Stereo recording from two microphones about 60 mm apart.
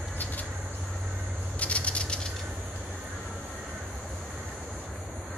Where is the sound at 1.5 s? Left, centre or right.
Left.